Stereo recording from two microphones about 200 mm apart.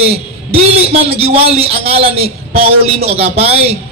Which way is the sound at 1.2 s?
30° right (ahead or behind).